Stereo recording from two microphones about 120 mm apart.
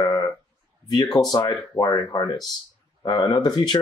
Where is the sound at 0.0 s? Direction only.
30° left (ahead or behind).